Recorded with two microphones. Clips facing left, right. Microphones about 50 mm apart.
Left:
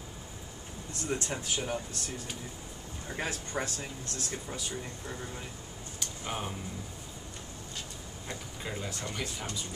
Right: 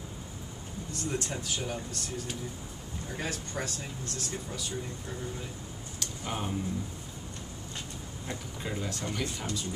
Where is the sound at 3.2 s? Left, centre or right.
Left.